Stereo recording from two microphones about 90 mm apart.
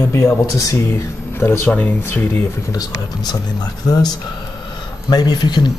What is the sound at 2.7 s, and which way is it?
Speech, 45° left (ahead or behind).